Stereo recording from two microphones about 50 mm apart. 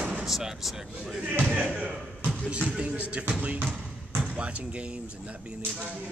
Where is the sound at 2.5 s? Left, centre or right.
Right.